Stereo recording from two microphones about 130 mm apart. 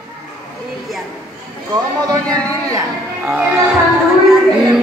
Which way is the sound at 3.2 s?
10° right (ahead or behind).